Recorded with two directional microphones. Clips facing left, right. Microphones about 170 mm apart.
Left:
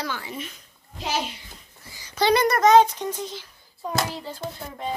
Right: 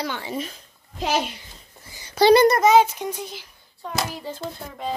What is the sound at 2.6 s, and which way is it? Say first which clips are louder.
Speech: even; 5° right (ahead or behind).